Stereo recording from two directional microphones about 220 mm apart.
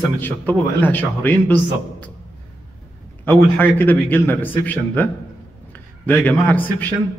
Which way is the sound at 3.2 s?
10° left (ahead or behind).